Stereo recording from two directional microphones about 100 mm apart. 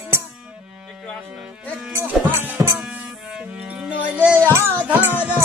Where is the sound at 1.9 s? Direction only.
25° right (ahead or behind).